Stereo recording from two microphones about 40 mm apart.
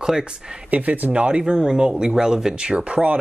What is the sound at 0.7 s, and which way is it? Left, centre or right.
Speech, right.